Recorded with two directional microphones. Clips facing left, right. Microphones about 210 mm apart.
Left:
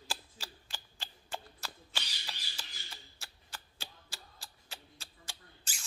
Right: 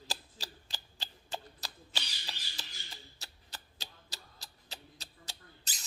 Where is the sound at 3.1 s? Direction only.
35° right (ahead or behind).